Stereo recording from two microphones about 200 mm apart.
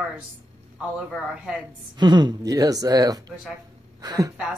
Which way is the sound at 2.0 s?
20° right (ahead or behind).